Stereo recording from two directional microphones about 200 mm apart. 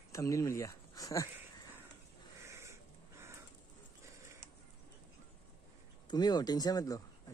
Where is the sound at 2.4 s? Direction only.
15° right (ahead or behind).